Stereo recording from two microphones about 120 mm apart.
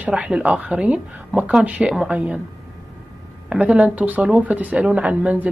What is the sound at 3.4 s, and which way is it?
Speech, 10° right (ahead or behind).